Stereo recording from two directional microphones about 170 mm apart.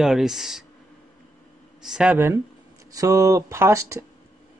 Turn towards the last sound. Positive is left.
turn(degrees=-15)  # may be behind; listen again after turning